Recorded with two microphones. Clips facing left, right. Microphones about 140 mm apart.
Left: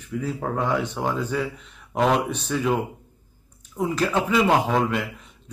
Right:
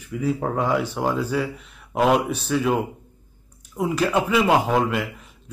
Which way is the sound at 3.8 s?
10° right (ahead or behind).